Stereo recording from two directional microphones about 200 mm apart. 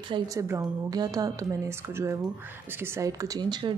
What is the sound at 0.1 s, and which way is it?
Speech, 15° right (ahead or behind).